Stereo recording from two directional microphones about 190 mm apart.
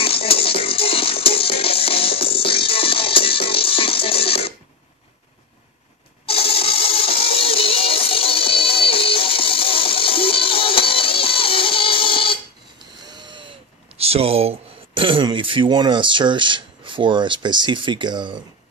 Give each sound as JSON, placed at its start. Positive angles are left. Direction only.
{"t": 0.0, "sound": "music", "side_deg": 30}
{"t": 6.2, "sound": "music", "side_deg": 30}
{"t": 12.7, "sound": "speech", "side_deg": -25}